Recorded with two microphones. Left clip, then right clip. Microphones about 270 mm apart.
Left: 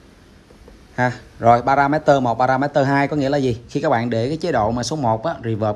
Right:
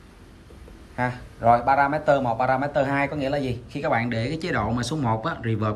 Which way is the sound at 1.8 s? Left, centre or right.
Left.